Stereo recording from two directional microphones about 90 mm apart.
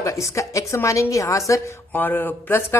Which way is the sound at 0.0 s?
35° left (ahead or behind).